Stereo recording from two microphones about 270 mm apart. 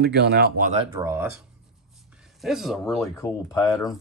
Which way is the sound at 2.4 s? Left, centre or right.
Centre.